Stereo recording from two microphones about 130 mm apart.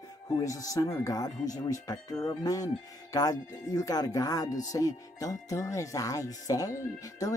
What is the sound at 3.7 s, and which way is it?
Speech, 30° left (ahead or behind).